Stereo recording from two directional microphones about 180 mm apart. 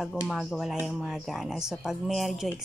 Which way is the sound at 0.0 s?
Centre (ahead or behind).